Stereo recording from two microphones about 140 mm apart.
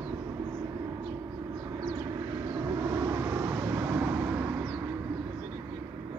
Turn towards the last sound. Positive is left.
turn(degrees=-15)  # may be behind; listen again after turning